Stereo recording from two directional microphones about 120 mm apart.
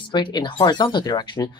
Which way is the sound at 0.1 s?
40° left (ahead or behind).